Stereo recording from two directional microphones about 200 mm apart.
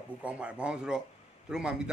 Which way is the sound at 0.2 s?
5° right (ahead or behind).